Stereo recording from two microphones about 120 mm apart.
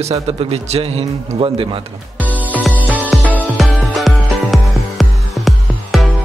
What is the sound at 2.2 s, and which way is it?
Music, 15° right (ahead or behind).